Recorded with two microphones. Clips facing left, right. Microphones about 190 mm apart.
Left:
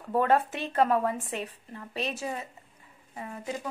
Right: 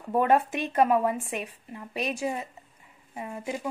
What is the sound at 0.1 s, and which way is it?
A woman's voice, 15° right (ahead or behind).